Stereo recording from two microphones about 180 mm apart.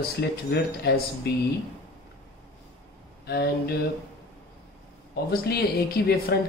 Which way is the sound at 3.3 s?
60° left (ahead or behind).